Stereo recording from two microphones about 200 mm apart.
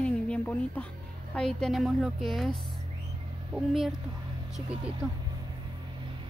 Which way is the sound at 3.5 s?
Centre (ahead or behind).